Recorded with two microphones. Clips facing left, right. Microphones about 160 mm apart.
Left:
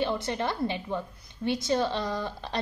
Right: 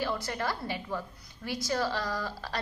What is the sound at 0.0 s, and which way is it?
A woman's voice, 20° left (ahead or behind).